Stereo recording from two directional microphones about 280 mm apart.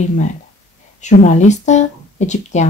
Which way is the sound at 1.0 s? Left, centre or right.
Left.